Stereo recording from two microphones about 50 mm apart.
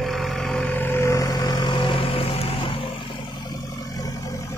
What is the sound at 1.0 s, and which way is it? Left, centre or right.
Vehicle, left.